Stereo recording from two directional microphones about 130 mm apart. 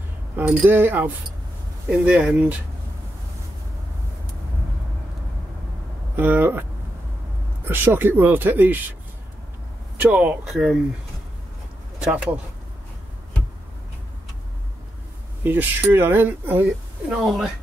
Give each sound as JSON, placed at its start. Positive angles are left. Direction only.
{"t": 0.4, "sound": "speech", "side_deg": -15}
{"t": 6.1, "sound": "speech", "side_deg": -15}
{"t": 7.6, "sound": "speech", "side_deg": -15}
{"t": 9.9, "sound": "speech", "side_deg": -10}
{"t": 12.0, "sound": "speech", "side_deg": -10}
{"t": 15.4, "sound": "speech", "side_deg": -15}
{"t": 17.2, "sound": "speech", "side_deg": 0}